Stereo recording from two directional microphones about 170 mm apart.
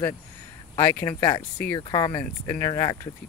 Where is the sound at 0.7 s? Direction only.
25° left (ahead or behind).